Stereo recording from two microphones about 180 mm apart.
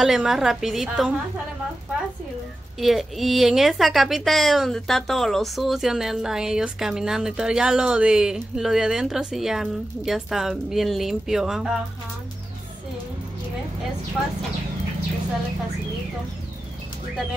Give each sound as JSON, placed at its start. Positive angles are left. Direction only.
{"t": 0.0, "sound": "a woman's voice", "side_deg": 0}
{"t": 2.8, "sound": "a woman's voice", "side_deg": 0}